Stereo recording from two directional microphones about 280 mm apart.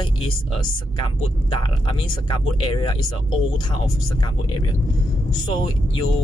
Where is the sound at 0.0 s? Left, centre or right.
Centre.